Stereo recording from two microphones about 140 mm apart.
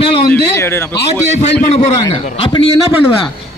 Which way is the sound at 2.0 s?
30° left (ahead or behind).